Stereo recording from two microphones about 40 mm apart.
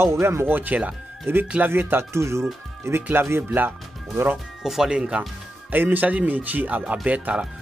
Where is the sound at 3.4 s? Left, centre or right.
Right.